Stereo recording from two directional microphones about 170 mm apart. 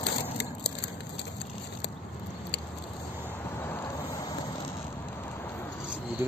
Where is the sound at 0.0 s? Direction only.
75° left (ahead or behind).